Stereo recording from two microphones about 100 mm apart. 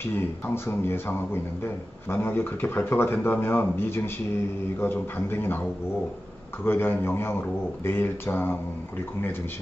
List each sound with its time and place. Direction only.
0.7 s a man's voice: 25° left (ahead or behind)
5.3 s a man's voice: 20° left (ahead or behind)
6.6 s a man's voice: 20° left (ahead or behind)